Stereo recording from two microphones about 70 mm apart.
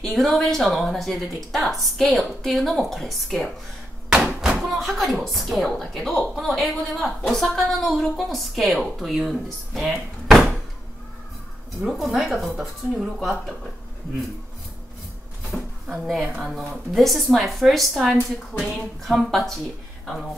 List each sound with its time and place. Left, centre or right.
0.0 s speech: centre
11.8 s speech: centre
15.5 s speech: centre